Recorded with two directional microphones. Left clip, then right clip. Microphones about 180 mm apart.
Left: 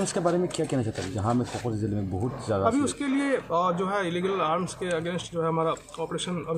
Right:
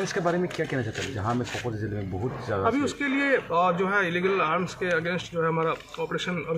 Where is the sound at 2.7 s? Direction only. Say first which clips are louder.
Right 2 dB; centre (ahead or behind).